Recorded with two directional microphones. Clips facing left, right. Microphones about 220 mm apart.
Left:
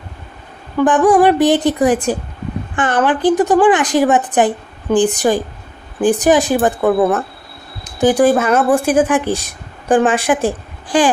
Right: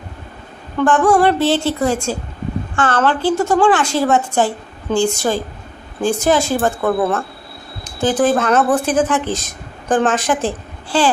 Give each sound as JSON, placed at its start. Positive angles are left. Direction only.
{"t": 0.7, "sound": "speech", "side_deg": 15}